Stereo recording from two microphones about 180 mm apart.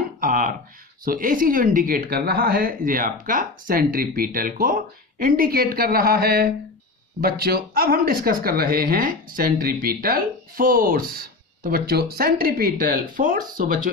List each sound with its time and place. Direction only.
0.2 s speech: 50° right (ahead or behind)